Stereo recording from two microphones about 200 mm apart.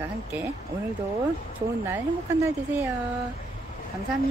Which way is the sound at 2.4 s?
10° right (ahead or behind).